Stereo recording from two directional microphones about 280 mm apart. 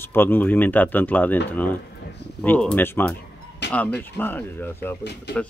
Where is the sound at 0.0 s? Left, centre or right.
Centre.